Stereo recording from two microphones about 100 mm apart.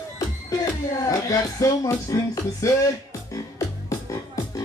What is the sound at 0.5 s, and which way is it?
Music, 35° left (ahead or behind).